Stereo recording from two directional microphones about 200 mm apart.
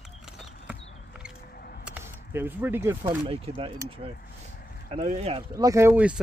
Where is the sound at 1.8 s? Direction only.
10° right (ahead or behind).